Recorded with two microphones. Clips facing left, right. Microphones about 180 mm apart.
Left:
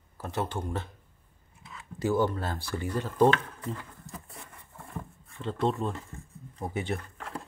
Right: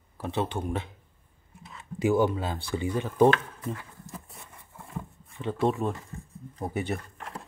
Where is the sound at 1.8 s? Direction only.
20° right (ahead or behind).